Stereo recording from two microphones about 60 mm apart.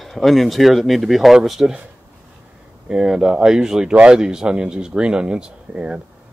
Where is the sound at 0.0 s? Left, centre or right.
Centre.